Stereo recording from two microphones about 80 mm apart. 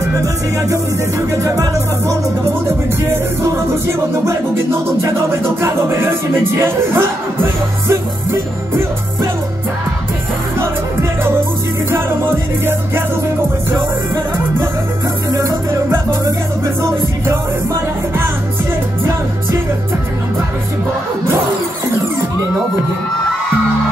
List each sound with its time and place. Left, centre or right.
1.3 s music: right
5.0 s music: right
10.6 s music: right
15.3 s music: right